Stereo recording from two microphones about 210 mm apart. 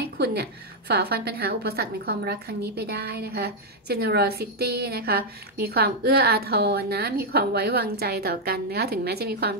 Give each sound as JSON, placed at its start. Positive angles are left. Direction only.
{"t": 0.2, "sound": "a woman's voice", "side_deg": -50}